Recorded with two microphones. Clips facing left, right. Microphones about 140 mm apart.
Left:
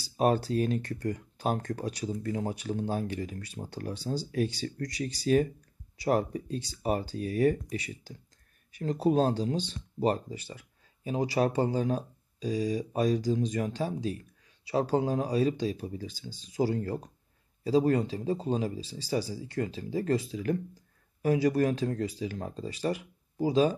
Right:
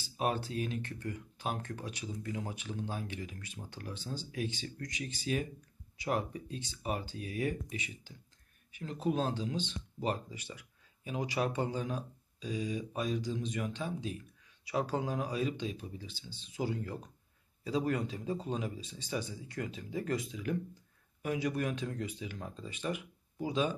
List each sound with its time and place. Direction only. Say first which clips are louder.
0.0 s speech: left 8 dB; 40° left (ahead or behind)